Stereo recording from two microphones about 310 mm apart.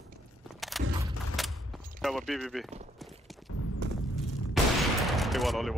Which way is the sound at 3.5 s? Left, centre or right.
Left.